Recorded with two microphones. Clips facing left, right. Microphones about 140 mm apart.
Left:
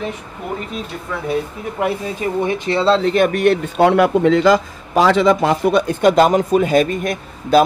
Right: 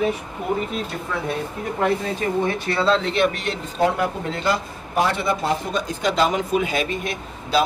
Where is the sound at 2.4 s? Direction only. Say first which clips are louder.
Left 7 dB; 15° left (ahead or behind).